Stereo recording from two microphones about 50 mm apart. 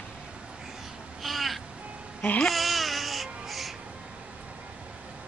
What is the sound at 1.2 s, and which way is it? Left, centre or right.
Crow, centre.